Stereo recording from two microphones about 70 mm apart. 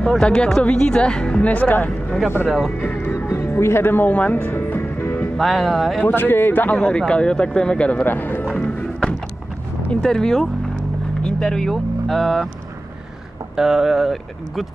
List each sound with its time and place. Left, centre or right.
0.2 s speech: centre
2.4 s speech: centre
2.8 s music: left
5.4 s speech: centre
6.0 s speech: left; by 8.0 s centre
8.0 s speech: left
8.5 s music: centre
9.8 s speech: centre
13.6 s speech: centre